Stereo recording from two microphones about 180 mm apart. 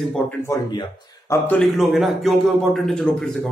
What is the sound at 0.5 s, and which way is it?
Speech, 20° left (ahead or behind).